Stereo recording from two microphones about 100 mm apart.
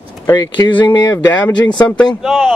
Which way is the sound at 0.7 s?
50° left (ahead or behind).